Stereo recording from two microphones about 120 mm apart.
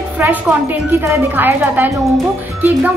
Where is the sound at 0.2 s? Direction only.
15° right (ahead or behind).